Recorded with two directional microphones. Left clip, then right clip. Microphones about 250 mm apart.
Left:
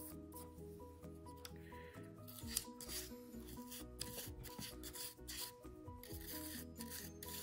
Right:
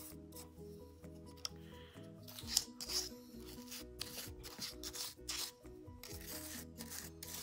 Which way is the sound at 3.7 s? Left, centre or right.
Right.